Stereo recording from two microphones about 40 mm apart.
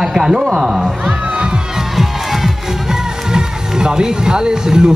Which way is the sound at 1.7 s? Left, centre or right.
Centre.